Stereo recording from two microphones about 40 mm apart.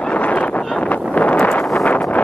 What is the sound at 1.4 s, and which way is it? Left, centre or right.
Wind noise, left.